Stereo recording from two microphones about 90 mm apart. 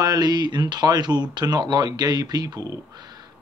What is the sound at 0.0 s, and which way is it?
Speech, 45° right (ahead or behind).